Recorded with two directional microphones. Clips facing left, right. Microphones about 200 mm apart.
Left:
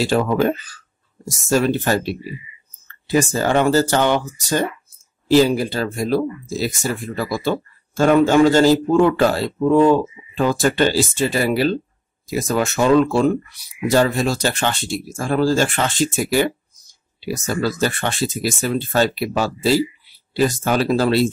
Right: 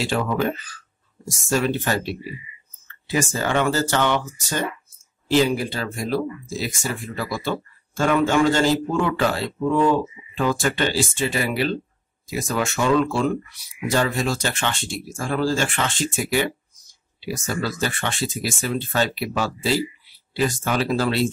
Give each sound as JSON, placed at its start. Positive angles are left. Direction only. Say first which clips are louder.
{"t": 0.0, "sound": "speech", "louder": "left 5 dB", "side_deg": 40}
{"t": 1.5, "sound": "speech", "louder": "left 4 dB", "side_deg": 40}
{"t": 2.9, "sound": "a sound", "louder": "left 6 dB", "side_deg": 40}
{"t": 3.3, "sound": "speech", "louder": "left 5 dB", "side_deg": 35}
{"t": 17.2, "sound": "speech", "louder": "left 5 dB", "side_deg": 40}